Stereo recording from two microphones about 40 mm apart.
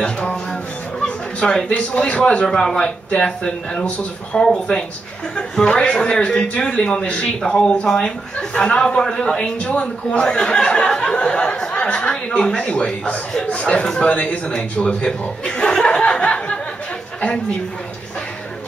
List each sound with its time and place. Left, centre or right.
0.0 s music: left
1.7 s a man's voice: left
2.4 s a man's voice: centre
9.6 s speech: left
10.2 s a man's voice: centre; by 14.3 s left
14.5 s a man's voice: left
15.7 s a sound: left